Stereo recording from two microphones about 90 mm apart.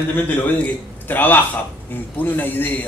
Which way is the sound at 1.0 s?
20° left (ahead or behind).